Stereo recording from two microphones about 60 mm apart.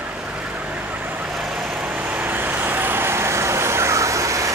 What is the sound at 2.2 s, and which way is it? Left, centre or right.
Vehicle, right.